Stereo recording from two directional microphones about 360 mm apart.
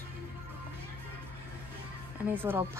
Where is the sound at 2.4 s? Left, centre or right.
Centre.